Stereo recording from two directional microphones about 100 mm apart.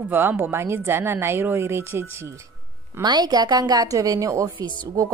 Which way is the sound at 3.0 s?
45° right (ahead or behind).